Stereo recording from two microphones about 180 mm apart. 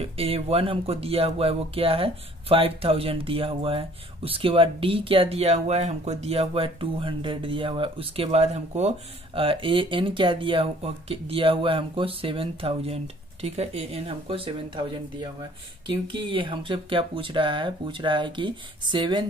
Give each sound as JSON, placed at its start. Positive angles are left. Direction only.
{"t": 0.0, "sound": "speech", "side_deg": -35}